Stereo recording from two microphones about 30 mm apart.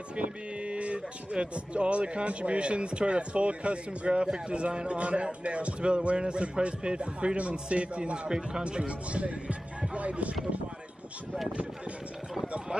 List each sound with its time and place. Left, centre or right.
0.1 s speech: right
8.3 s speech: right
8.6 s speech: right